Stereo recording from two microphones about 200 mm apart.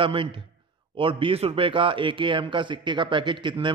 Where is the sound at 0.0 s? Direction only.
25° right (ahead or behind).